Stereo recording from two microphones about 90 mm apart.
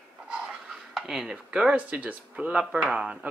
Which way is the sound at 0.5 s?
5° right (ahead or behind).